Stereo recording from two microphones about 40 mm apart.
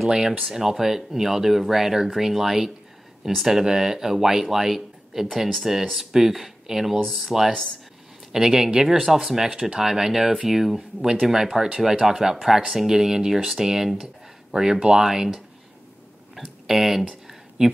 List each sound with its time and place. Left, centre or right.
0.4 s speech: centre
16.3 s a sound: centre
17.6 s speech: centre